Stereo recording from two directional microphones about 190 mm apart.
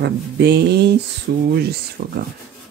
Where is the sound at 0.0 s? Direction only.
60° right (ahead or behind).